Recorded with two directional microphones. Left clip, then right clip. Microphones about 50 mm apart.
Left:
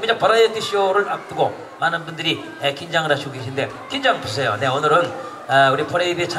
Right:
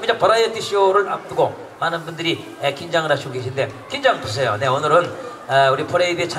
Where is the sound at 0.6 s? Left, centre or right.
Left.